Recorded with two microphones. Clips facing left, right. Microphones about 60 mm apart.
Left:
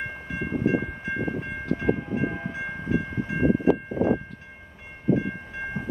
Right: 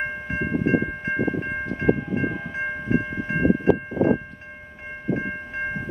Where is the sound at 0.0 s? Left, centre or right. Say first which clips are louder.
Right 5 dB; right.